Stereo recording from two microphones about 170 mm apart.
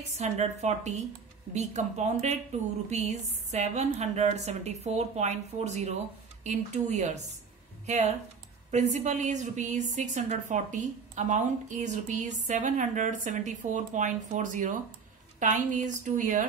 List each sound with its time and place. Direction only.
0.1 s a woman's voice: 40° right (ahead or behind)